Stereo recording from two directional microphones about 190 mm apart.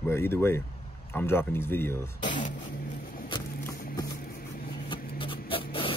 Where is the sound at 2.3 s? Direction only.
40° left (ahead or behind).